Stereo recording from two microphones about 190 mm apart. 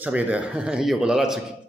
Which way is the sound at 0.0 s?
10° right (ahead or behind).